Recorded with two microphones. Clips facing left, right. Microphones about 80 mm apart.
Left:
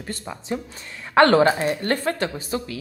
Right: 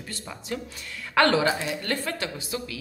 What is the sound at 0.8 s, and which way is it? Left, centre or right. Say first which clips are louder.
Speech: left 6 dB; left.